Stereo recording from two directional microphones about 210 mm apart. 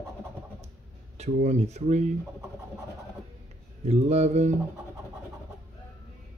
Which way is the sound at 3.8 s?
30° right (ahead or behind).